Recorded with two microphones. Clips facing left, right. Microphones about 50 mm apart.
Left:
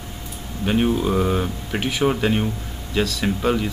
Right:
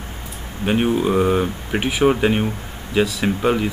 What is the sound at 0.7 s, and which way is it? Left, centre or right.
Speech, centre.